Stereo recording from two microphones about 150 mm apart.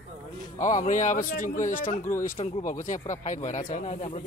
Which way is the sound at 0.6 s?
55° left (ahead or behind).